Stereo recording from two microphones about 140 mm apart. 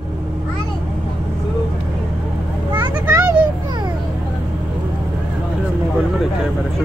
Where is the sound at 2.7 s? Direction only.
30° right (ahead or behind).